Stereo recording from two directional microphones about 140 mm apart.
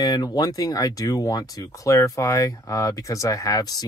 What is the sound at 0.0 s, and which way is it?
Speech, 30° left (ahead or behind).